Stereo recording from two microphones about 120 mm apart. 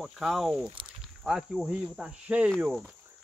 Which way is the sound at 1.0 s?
5° right (ahead or behind).